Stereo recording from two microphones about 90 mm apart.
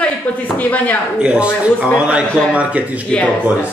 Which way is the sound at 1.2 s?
10° right (ahead or behind).